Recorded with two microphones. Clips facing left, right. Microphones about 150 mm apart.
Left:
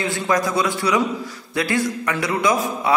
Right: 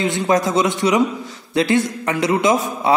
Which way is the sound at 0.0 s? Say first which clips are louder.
Right 3 dB; 20° right (ahead or behind).